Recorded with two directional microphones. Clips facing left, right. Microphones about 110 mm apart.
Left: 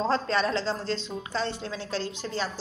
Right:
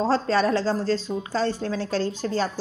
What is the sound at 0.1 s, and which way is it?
A woman's voice, 40° right (ahead or behind).